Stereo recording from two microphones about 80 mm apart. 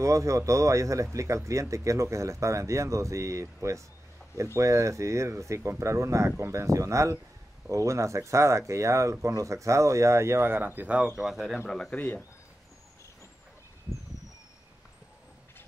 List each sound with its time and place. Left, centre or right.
0.0 s speech: right; by 11.6 s centre
11.6 s speech: centre
11.9 s speech: centre